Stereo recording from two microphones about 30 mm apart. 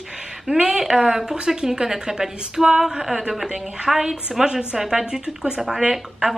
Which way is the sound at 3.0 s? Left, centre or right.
Centre.